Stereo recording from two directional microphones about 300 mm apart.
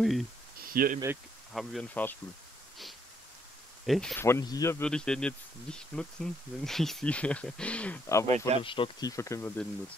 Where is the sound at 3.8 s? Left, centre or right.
Centre.